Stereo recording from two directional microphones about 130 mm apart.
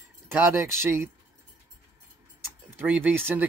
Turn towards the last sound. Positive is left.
turn(degrees=-15)  # may be behind; listen again after turning